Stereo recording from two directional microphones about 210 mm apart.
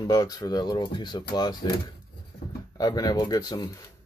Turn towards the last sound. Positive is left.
turn(degrees=15)  # may be behind; listen again after turning